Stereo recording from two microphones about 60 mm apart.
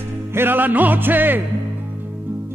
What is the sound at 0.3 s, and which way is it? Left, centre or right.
Music, right.